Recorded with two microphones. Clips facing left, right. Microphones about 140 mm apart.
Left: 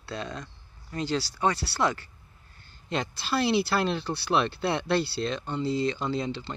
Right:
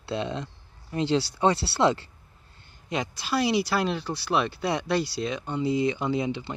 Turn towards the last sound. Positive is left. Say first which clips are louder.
# right 3 dB
turn(degrees=-15)  # may be behind; listen again after turning